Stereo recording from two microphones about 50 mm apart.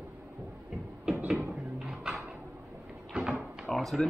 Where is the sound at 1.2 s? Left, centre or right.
Centre.